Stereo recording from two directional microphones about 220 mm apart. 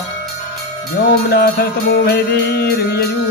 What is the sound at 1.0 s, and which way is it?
Music, 45° left (ahead or behind).